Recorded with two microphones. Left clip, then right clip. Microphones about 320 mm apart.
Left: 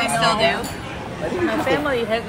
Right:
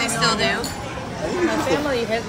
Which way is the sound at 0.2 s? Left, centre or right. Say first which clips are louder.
Left 2 dB; centre.